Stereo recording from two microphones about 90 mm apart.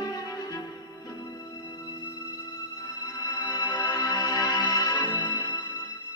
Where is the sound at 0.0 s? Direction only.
45° left (ahead or behind).